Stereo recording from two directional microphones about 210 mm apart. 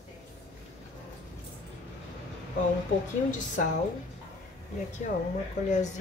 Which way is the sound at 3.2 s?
35° left (ahead or behind).